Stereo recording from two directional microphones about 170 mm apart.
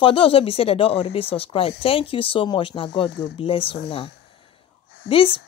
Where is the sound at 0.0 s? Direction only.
30° left (ahead or behind).